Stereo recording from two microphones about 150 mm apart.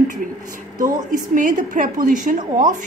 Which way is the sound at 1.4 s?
60° right (ahead or behind).